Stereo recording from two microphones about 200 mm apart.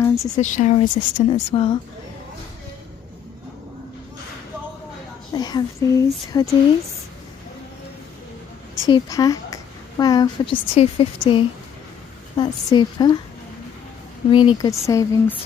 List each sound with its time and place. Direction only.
0.0 s a sound: 15° left (ahead or behind)
0.4 s speech: 35° left (ahead or behind)
5.3 s speech: 20° left (ahead or behind)
8.8 s a woman's voice: 15° left (ahead or behind)
14.3 s speech: 20° left (ahead or behind)